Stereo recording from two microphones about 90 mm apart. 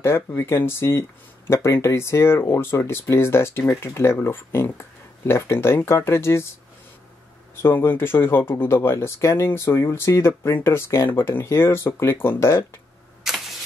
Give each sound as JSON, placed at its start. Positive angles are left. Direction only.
{"t": 0.0, "sound": "speech", "side_deg": 25}
{"t": 7.6, "sound": "speech", "side_deg": 25}
{"t": 13.2, "sound": "camera", "side_deg": -5}